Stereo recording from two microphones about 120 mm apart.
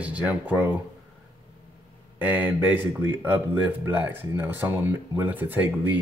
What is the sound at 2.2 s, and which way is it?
Speech, 15° right (ahead or behind).